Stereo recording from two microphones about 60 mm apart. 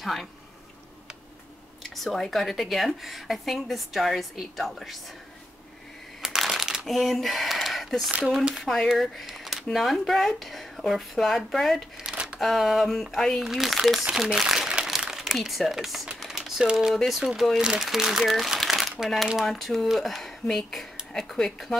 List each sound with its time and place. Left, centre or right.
0.0 s speech: centre
1.8 s speech: centre
6.2 s a sound: centre
8.6 s speech: centre
12.1 s a sound: centre
12.4 s speech: centre
14.0 s crumpling: centre
15.2 s speech: centre
16.3 s typing: centre
16.9 s speech: centre